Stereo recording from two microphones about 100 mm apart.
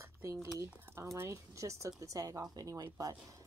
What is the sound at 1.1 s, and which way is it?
Speech, 30° right (ahead or behind).